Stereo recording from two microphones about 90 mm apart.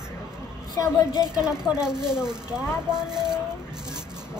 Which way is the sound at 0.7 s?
35° left (ahead or behind).